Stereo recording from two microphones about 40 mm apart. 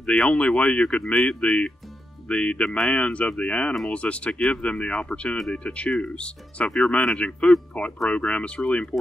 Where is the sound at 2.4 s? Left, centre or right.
Left.